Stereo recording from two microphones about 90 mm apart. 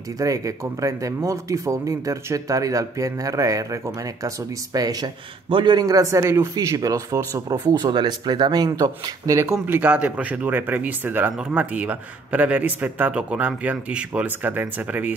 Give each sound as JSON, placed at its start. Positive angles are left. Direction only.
{"t": 0.2, "sound": "speech", "side_deg": -40}
{"t": 5.5, "sound": "speech", "side_deg": -60}
{"t": 9.7, "sound": "speech", "side_deg": -15}